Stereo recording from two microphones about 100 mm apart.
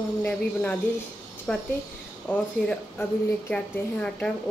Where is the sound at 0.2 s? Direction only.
15° left (ahead or behind).